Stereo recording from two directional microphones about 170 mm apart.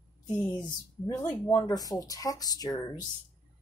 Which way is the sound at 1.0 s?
20° left (ahead or behind).